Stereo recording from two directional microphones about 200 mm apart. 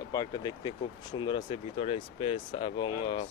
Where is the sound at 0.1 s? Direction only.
20° left (ahead or behind).